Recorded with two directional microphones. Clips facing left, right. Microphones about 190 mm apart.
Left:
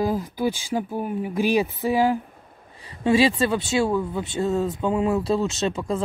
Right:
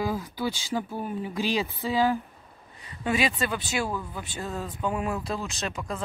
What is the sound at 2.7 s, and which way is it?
Speech, 30° left (ahead or behind).